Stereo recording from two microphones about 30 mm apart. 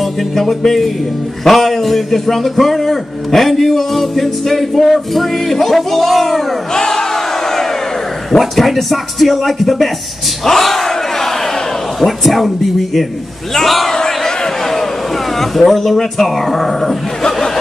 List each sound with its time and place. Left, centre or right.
0.0 s music: centre
1.4 s a man's voice: centre
6.7 s crowd: centre
8.4 s a man's voice: centre
10.4 s battle cry: centre
12.0 s a man's voice: centre
13.6 s battle cry: centre
13.9 s crowd: centre
15.3 s speech: centre